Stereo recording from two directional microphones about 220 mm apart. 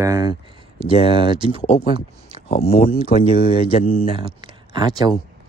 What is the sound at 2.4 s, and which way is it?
Speech, 25° left (ahead or behind).